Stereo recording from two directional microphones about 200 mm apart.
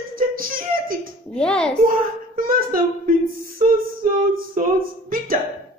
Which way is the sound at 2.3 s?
45° right (ahead or behind).